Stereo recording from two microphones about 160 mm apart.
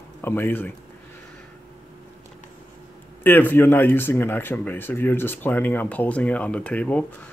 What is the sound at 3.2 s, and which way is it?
Speech, 10° left (ahead or behind).